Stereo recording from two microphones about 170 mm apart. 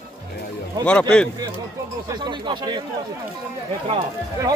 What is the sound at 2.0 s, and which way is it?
Speech, 25° right (ahead or behind).